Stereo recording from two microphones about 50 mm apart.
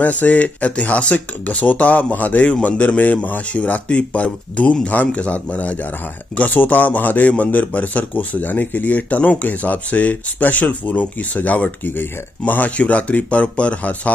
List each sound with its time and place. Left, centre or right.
0.0 s a man's voice: left